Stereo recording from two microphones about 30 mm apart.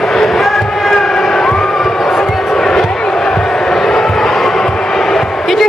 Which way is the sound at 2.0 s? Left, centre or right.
Centre.